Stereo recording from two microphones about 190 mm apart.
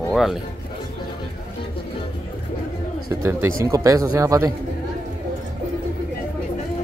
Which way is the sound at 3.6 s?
15° right (ahead or behind).